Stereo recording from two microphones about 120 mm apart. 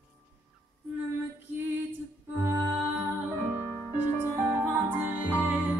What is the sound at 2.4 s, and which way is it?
Music, 20° right (ahead or behind).